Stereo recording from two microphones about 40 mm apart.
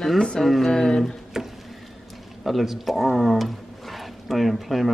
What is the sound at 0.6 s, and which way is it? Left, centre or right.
Speech, centre.